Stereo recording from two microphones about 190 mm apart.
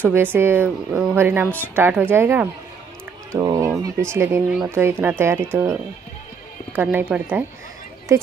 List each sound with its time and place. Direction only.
0.0 s speech: 10° right (ahead or behind)